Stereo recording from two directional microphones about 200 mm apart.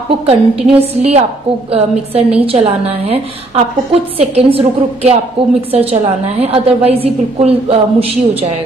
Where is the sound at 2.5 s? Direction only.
30° right (ahead or behind).